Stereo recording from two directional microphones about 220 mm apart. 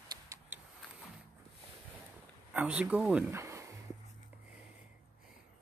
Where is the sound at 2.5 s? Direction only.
5° right (ahead or behind).